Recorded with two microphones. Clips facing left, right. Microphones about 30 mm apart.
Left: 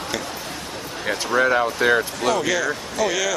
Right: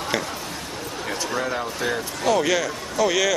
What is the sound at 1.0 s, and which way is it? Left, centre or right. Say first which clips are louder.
Speech: left 7 dB; left.